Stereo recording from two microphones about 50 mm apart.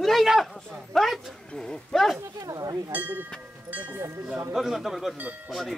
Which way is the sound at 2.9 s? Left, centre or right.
Right.